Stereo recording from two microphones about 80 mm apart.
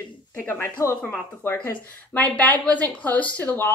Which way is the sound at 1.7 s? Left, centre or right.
Centre.